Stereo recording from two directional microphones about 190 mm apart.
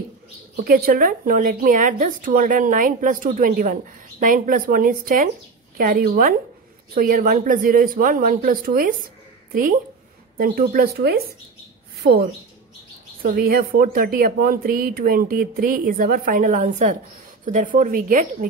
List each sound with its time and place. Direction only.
0.7 s a woman's voice: 50° right (ahead or behind)